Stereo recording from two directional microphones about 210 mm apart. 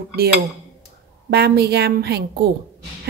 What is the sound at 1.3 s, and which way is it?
A woman's voice, 50° right (ahead or behind).